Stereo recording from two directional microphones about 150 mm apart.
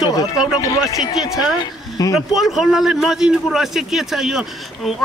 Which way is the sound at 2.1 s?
Centre (ahead or behind).